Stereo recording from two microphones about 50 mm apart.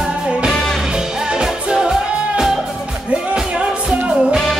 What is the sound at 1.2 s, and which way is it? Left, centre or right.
Music, centre.